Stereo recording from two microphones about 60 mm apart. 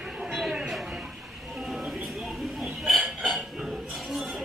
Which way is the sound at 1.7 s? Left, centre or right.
Centre.